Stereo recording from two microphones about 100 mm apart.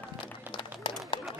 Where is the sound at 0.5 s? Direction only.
55° left (ahead or behind).